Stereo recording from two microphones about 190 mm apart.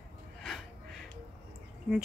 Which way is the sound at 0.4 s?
Centre (ahead or behind).